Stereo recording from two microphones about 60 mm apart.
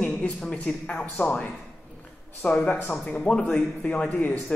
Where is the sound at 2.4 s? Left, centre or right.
Left.